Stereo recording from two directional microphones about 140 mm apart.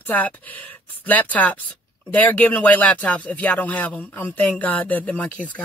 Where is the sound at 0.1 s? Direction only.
10° left (ahead or behind).